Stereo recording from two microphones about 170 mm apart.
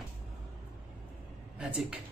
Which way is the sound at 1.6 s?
5° right (ahead or behind).